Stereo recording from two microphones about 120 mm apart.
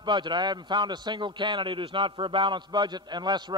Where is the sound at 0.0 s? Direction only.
40° right (ahead or behind).